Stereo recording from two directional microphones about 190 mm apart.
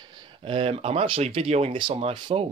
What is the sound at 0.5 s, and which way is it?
Speech, 30° right (ahead or behind).